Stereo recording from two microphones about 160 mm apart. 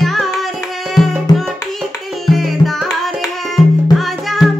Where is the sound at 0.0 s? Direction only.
Centre (ahead or behind).